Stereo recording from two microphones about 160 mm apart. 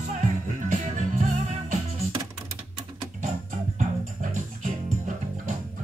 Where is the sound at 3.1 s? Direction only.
50° right (ahead or behind).